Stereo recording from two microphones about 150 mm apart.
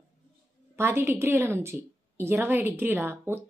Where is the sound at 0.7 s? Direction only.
15° right (ahead or behind).